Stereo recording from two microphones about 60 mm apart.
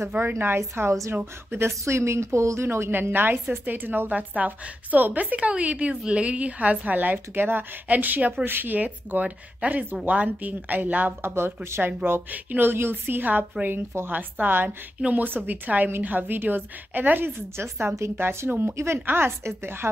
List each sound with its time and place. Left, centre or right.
0.2 s a woman's voice: right
0.6 s a woman's voice: right
1.1 s a woman's voice: right
1.7 s a woman's voice: right
11.3 s a woman's voice: right